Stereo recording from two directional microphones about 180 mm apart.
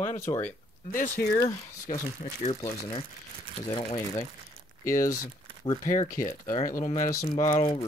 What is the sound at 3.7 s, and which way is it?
Speech, 30° left (ahead or behind).